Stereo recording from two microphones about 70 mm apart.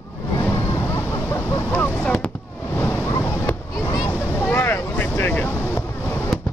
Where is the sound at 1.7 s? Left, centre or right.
Left.